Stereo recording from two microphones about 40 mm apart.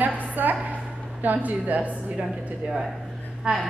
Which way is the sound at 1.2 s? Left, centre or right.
Right.